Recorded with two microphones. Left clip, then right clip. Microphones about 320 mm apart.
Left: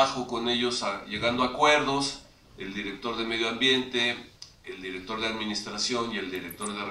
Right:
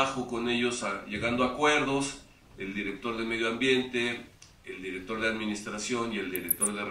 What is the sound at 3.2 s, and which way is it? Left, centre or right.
Speech, centre.